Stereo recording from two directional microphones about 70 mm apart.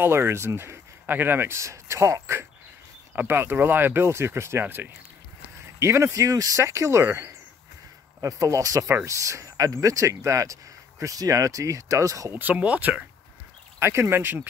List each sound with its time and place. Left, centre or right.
0.0 s speech: right
1.0 s speech: right
1.6 s speech: right
3.2 s speech: right
5.8 s speech: right
6.1 s speech: right
8.2 s speech: right
12.3 s speech: right
13.7 s speech: right